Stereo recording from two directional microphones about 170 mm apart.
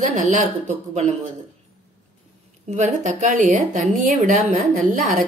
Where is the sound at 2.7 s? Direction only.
45° right (ahead or behind).